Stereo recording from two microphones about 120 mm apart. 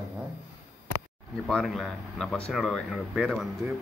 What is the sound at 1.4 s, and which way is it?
Speech, centre (ahead or behind).